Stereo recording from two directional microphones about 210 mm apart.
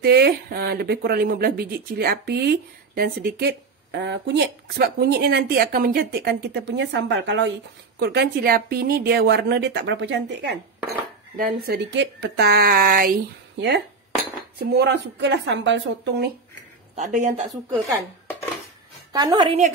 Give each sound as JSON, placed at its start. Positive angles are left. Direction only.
{"t": 0.0, "sound": "speech", "side_deg": -50}
{"t": 11.3, "sound": "a woman's voice", "side_deg": -45}
{"t": 16.9, "sound": "speech", "side_deg": -35}
{"t": 19.1, "sound": "a woman's voice", "side_deg": -20}